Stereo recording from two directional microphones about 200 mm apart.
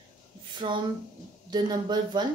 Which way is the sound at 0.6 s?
25° right (ahead or behind).